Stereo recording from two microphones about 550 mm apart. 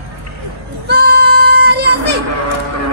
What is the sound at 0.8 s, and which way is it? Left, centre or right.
Music, centre.